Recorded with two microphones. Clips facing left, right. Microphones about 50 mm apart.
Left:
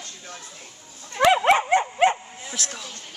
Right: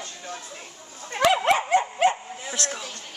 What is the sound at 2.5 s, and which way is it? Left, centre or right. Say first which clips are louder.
Speech: right 3 dB; centre.